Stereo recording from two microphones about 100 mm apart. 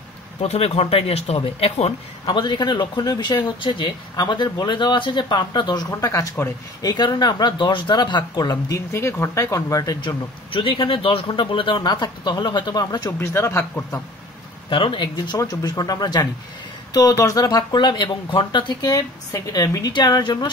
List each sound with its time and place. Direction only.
0.4 s speech: 90° left; by 8.5 s 45° left (ahead or behind)
8.6 s speech: 30° left (ahead or behind)
10.0 s speech: 60° left (ahead or behind); by 13.1 s 45° left (ahead or behind)
13.2 s speech: 25° left (ahead or behind)
14.7 s speech: 60° left (ahead or behind)
15.3 s speech: 40° left (ahead or behind)
17.5 s speech: 45° left (ahead or behind)